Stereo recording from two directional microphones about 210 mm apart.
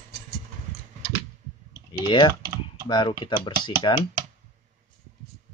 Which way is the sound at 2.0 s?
20° left (ahead or behind).